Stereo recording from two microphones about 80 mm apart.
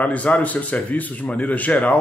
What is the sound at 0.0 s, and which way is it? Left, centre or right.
Speech, centre.